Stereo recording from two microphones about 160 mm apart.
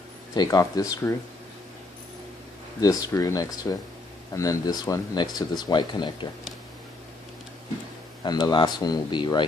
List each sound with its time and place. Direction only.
0.3 s speech: 25° left (ahead or behind)
2.8 s speech: 20° left (ahead or behind)
8.2 s speech: 25° left (ahead or behind)